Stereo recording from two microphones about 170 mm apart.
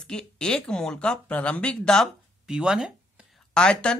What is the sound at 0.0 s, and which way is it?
Speech, 5° left (ahead or behind).